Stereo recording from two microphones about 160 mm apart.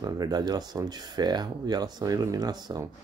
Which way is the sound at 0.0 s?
25° right (ahead or behind).